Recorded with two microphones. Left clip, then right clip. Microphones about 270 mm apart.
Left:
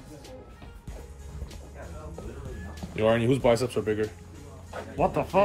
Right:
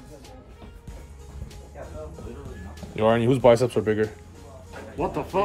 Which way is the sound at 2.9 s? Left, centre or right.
Centre.